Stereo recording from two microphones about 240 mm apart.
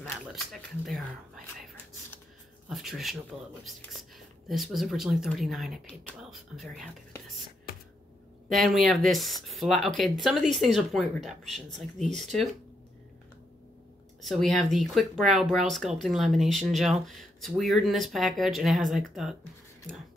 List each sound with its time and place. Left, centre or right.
0.2 s speech: centre
2.7 s speech: centre
4.5 s speech: centre
7.7 s typewriter: left
8.5 s speech: centre
14.2 s speech: centre